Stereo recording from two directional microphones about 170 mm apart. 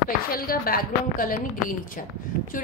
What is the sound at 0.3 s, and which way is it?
A woman's voice, 60° left (ahead or behind).